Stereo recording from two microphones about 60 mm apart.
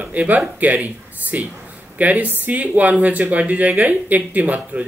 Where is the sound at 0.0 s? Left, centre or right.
Right.